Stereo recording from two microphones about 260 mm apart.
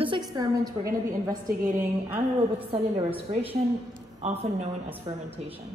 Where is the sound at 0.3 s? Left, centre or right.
Centre.